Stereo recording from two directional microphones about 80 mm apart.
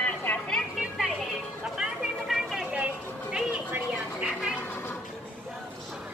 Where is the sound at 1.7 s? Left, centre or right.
Centre; by 4.3 s right.